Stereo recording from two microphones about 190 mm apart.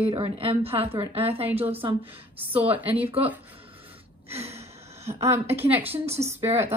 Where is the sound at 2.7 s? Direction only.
10° right (ahead or behind).